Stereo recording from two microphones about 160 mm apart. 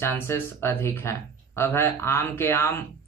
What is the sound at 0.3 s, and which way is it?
Speech, 15° left (ahead or behind).